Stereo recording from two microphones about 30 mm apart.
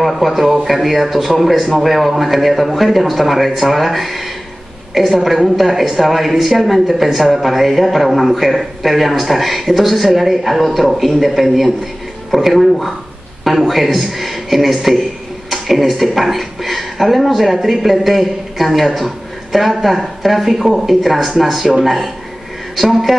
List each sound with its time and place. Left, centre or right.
0.0 s a man's voice: centre